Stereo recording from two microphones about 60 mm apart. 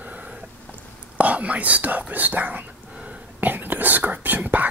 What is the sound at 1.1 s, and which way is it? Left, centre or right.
Whispering, right.